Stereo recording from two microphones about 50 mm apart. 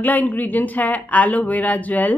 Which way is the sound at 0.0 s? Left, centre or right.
Left.